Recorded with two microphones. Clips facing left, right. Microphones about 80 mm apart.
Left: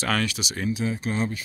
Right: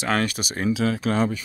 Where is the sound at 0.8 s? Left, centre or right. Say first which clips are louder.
Right 5 dB; right.